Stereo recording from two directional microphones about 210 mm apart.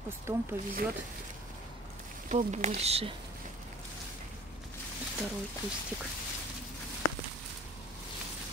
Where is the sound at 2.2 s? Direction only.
35° right (ahead or behind).